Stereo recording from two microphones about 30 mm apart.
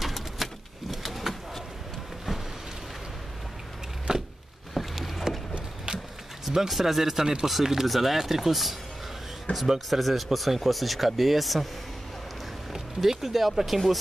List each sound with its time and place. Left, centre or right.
0.0 s bird: centre
4.1 s a sound: right
4.7 s vehicle: centre
5.9 s a sound: right
6.4 s a sound: centre
6.7 s speech: centre
9.5 s a man's voice: left
9.8 s speech: centre
12.7 s speech: centre